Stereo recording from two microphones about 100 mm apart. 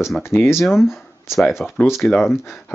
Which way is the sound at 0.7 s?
5° right (ahead or behind).